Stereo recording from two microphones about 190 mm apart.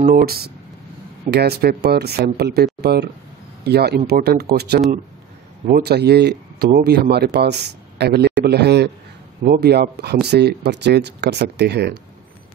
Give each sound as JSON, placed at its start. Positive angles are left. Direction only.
{"t": 0.0, "sound": "speech", "side_deg": -50}